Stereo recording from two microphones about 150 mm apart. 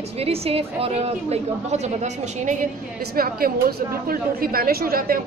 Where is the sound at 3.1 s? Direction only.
75° right (ahead or behind).